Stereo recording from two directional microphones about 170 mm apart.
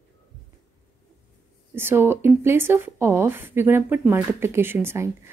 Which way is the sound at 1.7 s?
15° right (ahead or behind).